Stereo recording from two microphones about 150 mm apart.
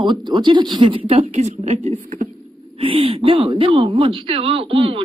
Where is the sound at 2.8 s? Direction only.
35° right (ahead or behind).